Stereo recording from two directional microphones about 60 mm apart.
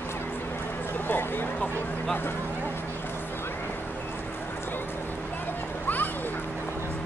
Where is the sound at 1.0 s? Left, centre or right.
Left.